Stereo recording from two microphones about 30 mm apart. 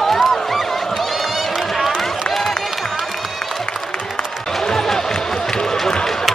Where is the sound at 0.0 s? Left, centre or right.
Centre.